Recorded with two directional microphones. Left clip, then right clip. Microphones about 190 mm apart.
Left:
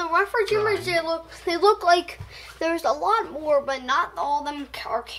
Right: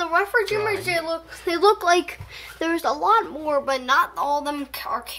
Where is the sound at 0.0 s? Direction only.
30° right (ahead or behind).